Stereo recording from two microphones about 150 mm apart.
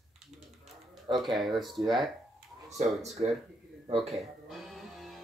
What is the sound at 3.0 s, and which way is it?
Speech, 45° right (ahead or behind).